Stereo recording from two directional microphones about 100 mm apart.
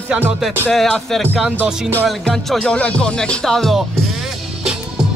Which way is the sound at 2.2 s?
5° left (ahead or behind).